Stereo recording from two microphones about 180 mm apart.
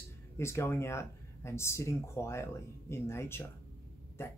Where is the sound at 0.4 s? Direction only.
15° left (ahead or behind).